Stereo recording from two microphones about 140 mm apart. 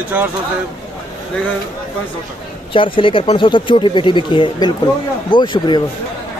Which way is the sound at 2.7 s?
40° left (ahead or behind).